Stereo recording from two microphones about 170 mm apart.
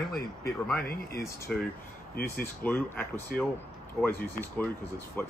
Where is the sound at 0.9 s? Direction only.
60° left (ahead or behind).